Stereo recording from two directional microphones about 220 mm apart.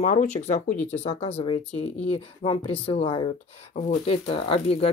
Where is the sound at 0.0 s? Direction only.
35° left (ahead or behind).